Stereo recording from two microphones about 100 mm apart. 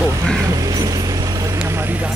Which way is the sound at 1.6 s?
25° right (ahead or behind).